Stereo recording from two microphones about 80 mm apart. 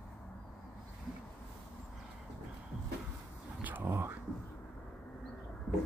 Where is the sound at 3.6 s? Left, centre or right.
Right.